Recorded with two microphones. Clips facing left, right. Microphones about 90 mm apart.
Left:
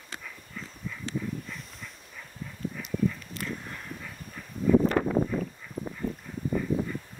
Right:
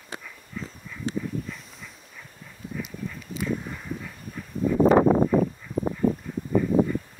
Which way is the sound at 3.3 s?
5° right (ahead or behind).